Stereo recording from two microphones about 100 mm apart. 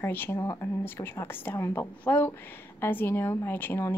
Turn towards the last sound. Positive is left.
turn(degrees=20)  # may be behind; listen again after turning